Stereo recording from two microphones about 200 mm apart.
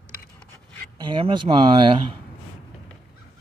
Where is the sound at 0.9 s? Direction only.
25° right (ahead or behind).